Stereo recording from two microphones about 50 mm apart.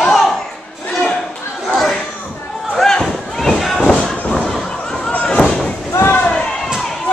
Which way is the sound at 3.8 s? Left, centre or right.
Left.